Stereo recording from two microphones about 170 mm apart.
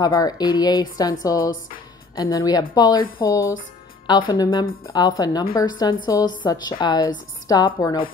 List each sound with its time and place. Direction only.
0.0 s a woman's voice: 20° left (ahead or behind)
1.4 s speech: 55° left (ahead or behind)
2.1 s a woman's voice: 20° left (ahead or behind)
4.3 s a woman's voice: 25° left (ahead or behind)